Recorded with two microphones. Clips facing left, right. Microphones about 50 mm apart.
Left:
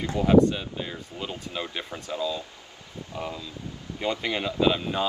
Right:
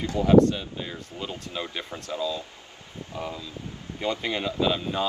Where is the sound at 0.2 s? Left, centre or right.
Centre.